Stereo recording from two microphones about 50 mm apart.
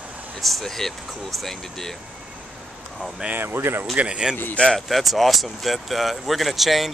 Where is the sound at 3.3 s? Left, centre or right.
Right.